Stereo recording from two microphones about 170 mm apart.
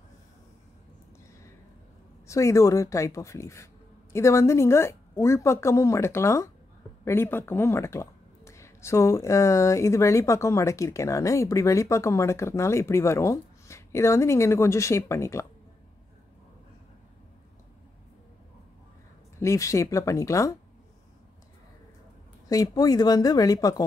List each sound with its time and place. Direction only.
2.2 s speech: 20° left (ahead or behind)
19.4 s speech: 20° left (ahead or behind)
22.5 s speech: 20° left (ahead or behind)